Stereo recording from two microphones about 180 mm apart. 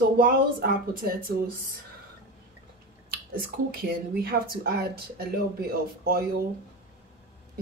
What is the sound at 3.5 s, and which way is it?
Speech, 60° right (ahead or behind).